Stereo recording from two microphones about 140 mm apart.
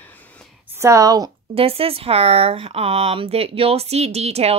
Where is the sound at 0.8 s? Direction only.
25° right (ahead or behind).